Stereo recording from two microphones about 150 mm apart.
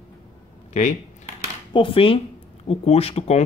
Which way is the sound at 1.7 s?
35° left (ahead or behind).